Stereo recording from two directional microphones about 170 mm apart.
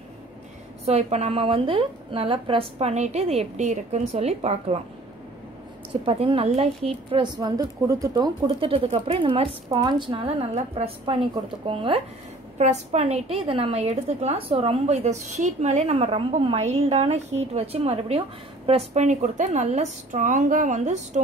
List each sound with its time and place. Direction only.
0.8 s a woman's voice: 40° right (ahead or behind)
6.0 s a woman's voice: 30° right (ahead or behind)
7.1 s a woman's voice: 25° right (ahead or behind)
8.5 s a woman's voice: 30° right (ahead or behind)